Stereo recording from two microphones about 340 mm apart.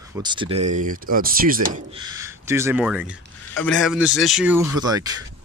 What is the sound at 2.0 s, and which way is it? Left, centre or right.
Speech, centre.